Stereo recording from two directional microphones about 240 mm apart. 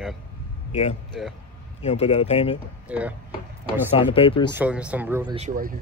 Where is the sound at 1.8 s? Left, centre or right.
Left.